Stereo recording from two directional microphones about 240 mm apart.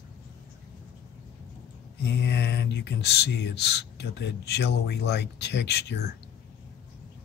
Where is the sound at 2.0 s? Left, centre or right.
Left.